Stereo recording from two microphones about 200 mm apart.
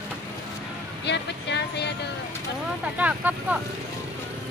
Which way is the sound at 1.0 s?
60° left (ahead or behind).